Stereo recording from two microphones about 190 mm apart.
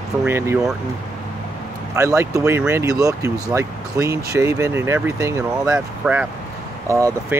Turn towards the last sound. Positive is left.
turn(degrees=-15)  # may be behind; listen again after turning